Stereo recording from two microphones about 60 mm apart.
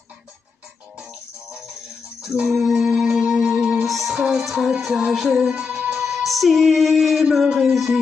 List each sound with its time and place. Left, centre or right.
2.2 s music: centre
3.8 s music: centre
6.0 s music: centre
7.4 s a sound: centre